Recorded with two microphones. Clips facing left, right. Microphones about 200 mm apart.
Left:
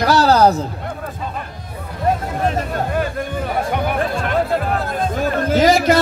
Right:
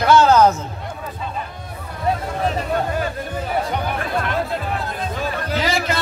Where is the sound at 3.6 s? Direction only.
50° left (ahead or behind).